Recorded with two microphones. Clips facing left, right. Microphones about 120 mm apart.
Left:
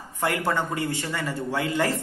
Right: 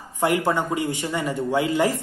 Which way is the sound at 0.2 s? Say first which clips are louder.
Right 4 dB; 15° right (ahead or behind).